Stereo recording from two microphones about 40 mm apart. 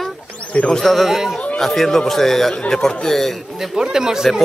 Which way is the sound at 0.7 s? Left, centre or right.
Centre.